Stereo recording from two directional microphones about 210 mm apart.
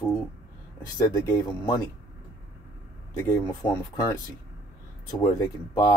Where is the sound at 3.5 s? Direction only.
15° left (ahead or behind).